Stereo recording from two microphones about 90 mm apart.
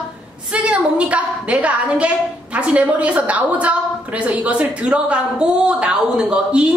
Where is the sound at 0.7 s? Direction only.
15° right (ahead or behind).